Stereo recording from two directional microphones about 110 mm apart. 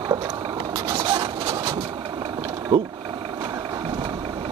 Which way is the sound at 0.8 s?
40° right (ahead or behind).